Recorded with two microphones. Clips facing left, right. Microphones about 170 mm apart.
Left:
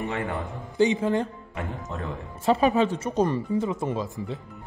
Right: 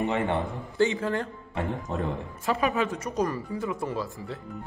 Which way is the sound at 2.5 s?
30° left (ahead or behind).